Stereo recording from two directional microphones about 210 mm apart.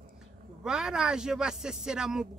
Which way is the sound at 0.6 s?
5° right (ahead or behind).